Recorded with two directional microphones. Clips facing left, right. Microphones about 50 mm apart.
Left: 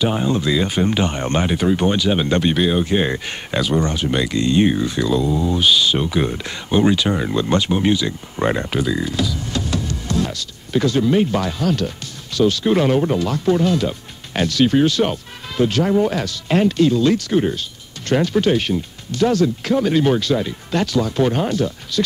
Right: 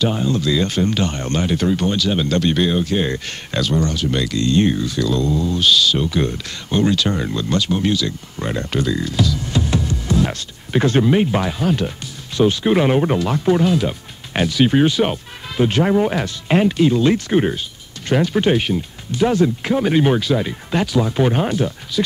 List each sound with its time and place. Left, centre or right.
0.0 s speech: centre
2.5 s speech: centre
2.8 s speech: centre
7.4 s speech: left
8.6 s speech: centre
9.5 s music: centre
10.3 s speech: right
11.1 s speech: centre
18.1 s speech: centre